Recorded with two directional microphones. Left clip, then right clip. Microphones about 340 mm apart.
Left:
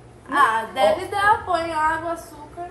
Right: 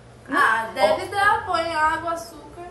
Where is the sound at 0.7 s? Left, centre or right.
Centre.